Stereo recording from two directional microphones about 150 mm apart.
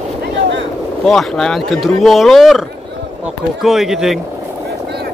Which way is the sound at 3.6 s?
Centre (ahead or behind).